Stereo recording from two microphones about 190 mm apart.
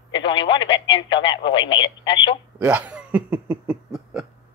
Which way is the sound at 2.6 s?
5° right (ahead or behind).